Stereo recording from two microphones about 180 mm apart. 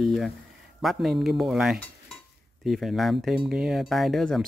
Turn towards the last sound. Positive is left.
turn(degrees=0)  # may be behind; listen again after turning